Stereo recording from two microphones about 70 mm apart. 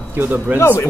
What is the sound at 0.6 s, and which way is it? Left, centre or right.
Speech, left.